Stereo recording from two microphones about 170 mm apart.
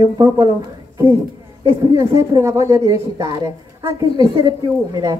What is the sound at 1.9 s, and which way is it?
A woman's voice, 15° right (ahead or behind).